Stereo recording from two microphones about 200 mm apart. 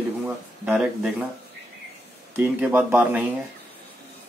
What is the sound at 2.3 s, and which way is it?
Speech, 10° right (ahead or behind).